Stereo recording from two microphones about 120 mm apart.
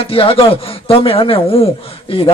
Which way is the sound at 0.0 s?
50° left (ahead or behind).